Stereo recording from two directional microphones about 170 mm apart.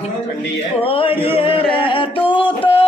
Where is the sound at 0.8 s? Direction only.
35° left (ahead or behind).